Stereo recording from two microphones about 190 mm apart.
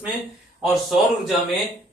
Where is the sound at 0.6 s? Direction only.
Centre (ahead or behind).